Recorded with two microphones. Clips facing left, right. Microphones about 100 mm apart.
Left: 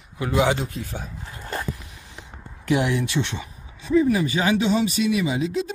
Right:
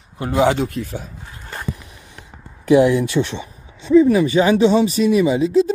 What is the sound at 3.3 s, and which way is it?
Speech, 30° right (ahead or behind).